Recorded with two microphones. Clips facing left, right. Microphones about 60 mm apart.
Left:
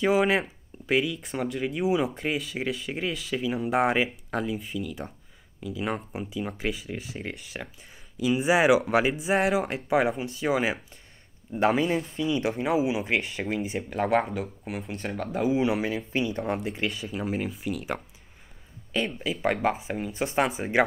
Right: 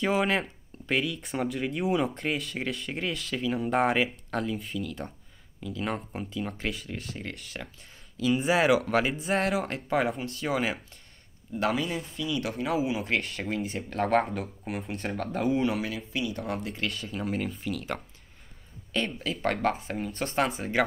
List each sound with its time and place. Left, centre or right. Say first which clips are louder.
0.0 s speech: left 3 dB; centre
11.5 s speech: left 5 dB; left
16.1 s speech: left 4 dB; left